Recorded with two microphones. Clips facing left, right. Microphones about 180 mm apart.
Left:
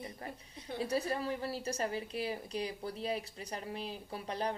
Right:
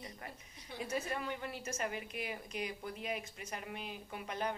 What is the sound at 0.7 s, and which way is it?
A woman's voice, 35° left (ahead or behind).